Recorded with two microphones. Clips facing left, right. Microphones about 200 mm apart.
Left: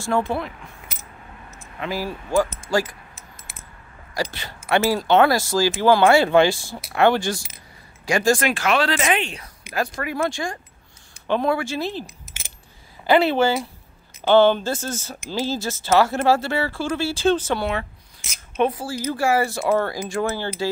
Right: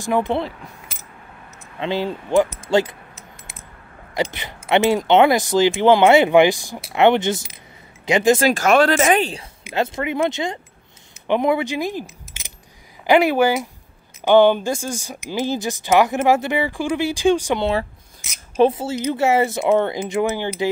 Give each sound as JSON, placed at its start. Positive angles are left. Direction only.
{"t": 0.0, "sound": "speech", "side_deg": -15}
{"t": 1.8, "sound": "speech", "side_deg": -25}
{"t": 2.7, "sound": "keys jangling", "side_deg": -25}
{"t": 4.1, "sound": "speech", "side_deg": -20}
{"t": 8.5, "sound": "speech", "side_deg": -45}
{"t": 9.3, "sound": "speech", "side_deg": -25}
{"t": 18.6, "sound": "speech", "side_deg": -25}